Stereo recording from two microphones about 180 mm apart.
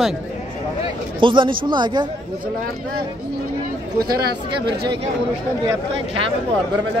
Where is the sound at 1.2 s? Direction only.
25° right (ahead or behind).